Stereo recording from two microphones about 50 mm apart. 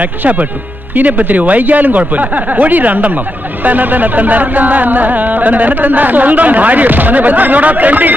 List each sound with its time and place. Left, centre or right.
0.0 s music: right